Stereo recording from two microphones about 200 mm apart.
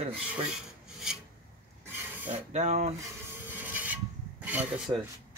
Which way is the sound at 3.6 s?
10° right (ahead or behind).